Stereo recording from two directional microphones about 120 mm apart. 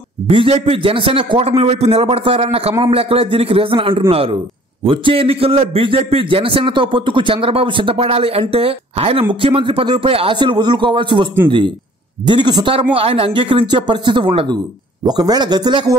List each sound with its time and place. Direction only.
0.3 s a man's voice: 50° right (ahead or behind)
12.9 s a man's voice: 50° right (ahead or behind)